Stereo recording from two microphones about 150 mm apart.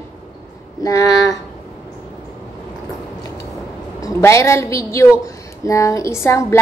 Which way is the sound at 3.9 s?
20° left (ahead or behind).